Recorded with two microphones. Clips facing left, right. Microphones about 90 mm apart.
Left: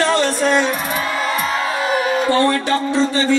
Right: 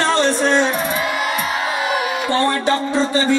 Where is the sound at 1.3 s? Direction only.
35° left (ahead or behind).